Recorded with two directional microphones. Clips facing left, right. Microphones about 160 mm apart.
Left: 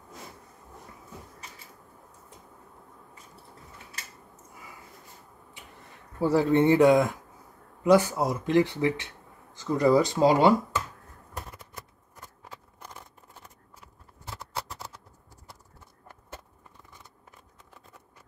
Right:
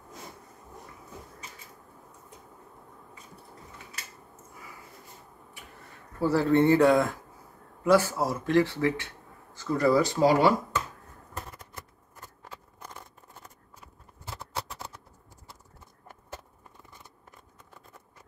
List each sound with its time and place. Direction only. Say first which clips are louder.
6.1 s speech: left 1 dB; 15° left (ahead or behind)